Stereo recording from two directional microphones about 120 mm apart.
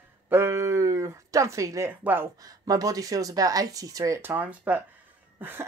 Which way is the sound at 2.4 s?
30° right (ahead or behind).